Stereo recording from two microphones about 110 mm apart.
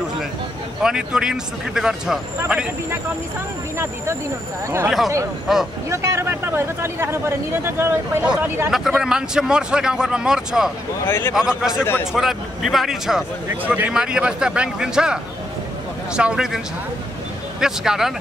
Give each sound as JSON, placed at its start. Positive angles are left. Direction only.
{"t": 0.8, "sound": "speech", "side_deg": -5}
{"t": 3.7, "sound": "speech", "side_deg": -25}
{"t": 4.8, "sound": "speech", "side_deg": 0}
{"t": 5.9, "sound": "speech", "side_deg": -25}
{"t": 8.2, "sound": "speech", "side_deg": -10}
{"t": 11.1, "sound": "speech", "side_deg": 20}
{"t": 11.3, "sound": "speech", "side_deg": -5}
{"t": 11.8, "sound": "speech", "side_deg": 20}
{"t": 12.1, "sound": "speech", "side_deg": -5}